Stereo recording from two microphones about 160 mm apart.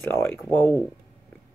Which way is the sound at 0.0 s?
15° left (ahead or behind).